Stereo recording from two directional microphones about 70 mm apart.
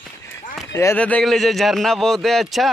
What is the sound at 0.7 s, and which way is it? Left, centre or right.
Speech, left.